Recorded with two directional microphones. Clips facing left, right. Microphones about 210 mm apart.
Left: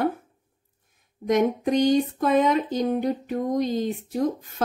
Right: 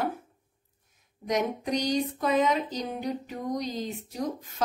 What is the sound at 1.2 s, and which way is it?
Speech, 50° left (ahead or behind).